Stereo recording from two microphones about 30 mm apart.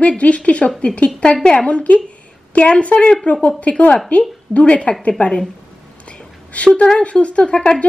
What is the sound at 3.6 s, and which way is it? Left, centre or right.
A woman's voice, left.